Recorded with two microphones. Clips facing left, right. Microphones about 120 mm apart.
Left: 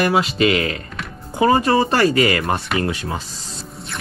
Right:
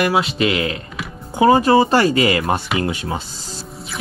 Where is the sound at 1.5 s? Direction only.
30° right (ahead or behind).